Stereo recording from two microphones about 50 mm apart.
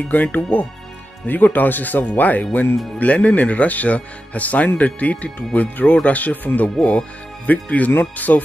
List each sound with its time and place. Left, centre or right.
0.1 s speech: left
6.8 s speech: left
8.3 s speech: left